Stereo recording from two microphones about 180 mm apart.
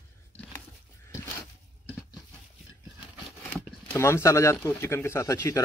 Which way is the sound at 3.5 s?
10° left (ahead or behind).